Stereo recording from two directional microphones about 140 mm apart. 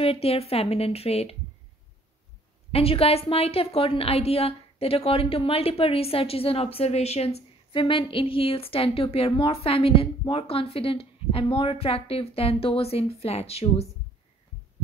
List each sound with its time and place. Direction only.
0.0 s a woman's voice: 45° left (ahead or behind)
2.7 s a woman's voice: 45° left (ahead or behind)